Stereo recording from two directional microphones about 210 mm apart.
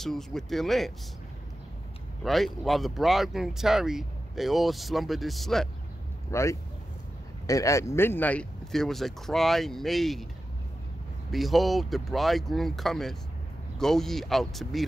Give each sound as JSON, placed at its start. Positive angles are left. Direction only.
{"t": 0.0, "sound": "speech", "side_deg": 0}
{"t": 2.2, "sound": "speech", "side_deg": 0}
{"t": 6.3, "sound": "speech", "side_deg": 15}
{"t": 11.3, "sound": "speech", "side_deg": 0}